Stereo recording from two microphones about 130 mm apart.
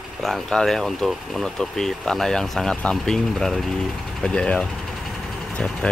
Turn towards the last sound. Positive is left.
turn(degrees=5)  # may be behind; listen again after turning